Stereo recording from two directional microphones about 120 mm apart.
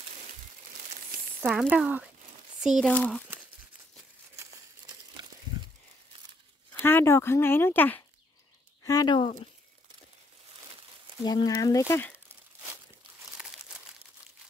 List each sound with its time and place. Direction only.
1.4 s speech: 10° right (ahead or behind)
2.9 s speech: 10° left (ahead or behind)
6.7 s speech: 15° left (ahead or behind)
8.8 s speech: 35° left (ahead or behind)
11.2 s speech: 35° left (ahead or behind)
11.9 s speech: 15° left (ahead or behind)